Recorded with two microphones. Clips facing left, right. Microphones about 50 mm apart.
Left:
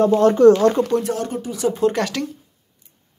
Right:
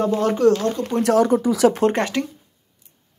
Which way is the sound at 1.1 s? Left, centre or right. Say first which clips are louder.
Right 8 dB; right.